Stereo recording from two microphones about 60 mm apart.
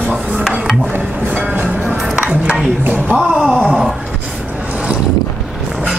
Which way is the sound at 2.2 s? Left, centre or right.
Centre.